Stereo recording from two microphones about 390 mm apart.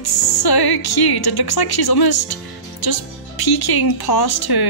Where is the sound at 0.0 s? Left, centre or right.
Left.